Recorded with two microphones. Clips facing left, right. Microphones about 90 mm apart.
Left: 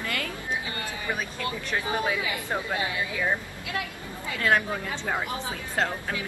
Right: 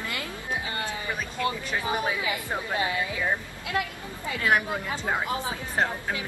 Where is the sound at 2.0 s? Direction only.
20° right (ahead or behind).